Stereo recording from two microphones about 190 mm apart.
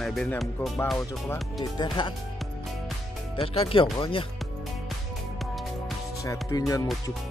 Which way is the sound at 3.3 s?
30° left (ahead or behind).